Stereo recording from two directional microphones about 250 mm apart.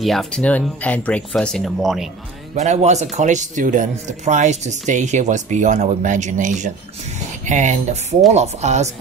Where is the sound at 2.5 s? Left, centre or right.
Right.